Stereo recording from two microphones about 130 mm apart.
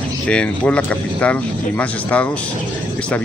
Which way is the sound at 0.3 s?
10° left (ahead or behind).